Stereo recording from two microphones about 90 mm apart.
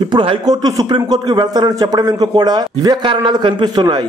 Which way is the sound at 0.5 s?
45° right (ahead or behind).